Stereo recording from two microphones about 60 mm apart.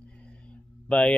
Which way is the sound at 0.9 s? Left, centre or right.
Centre.